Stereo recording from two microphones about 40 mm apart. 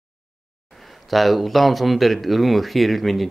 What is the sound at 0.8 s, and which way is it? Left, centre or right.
Speech, centre.